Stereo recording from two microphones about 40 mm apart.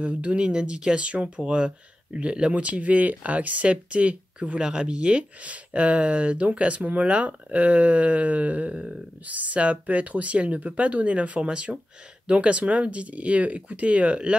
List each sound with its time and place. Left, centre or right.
0.0 s speech: right
0.5 s speech: right
4.6 s speech: right